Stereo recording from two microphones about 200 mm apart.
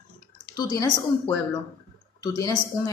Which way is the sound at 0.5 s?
20° left (ahead or behind).